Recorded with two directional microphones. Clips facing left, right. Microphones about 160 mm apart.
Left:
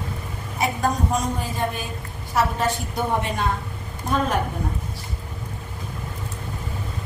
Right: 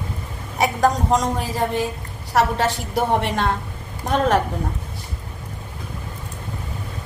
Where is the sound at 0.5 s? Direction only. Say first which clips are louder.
Right 4 dB; 90° right.